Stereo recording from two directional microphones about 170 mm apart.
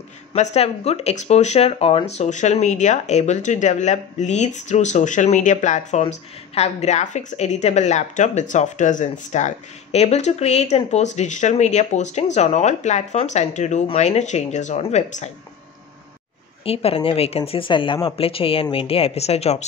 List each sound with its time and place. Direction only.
0.3 s speech: 40° left (ahead or behind)
16.6 s speech: 35° left (ahead or behind)